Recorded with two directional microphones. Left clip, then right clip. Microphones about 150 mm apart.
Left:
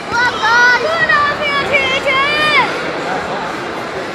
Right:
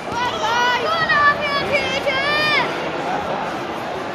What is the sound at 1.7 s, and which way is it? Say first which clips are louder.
Vehicle: left 6 dB; centre (ahead or behind).